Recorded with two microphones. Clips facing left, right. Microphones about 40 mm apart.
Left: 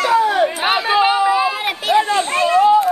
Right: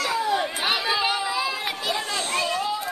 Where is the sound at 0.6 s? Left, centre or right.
Left.